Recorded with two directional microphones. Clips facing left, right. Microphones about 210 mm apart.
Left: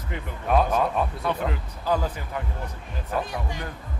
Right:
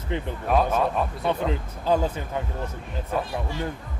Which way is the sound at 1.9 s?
25° right (ahead or behind).